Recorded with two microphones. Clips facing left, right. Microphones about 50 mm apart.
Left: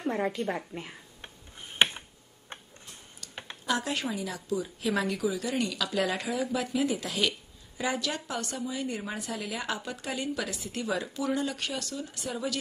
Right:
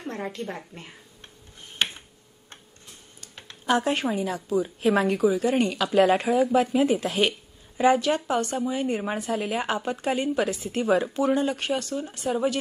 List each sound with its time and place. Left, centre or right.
0.0 s a woman's voice: centre
1.8 s a sound: left
3.6 s a woman's voice: right